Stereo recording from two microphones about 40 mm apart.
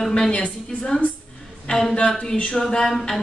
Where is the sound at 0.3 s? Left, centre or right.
Left.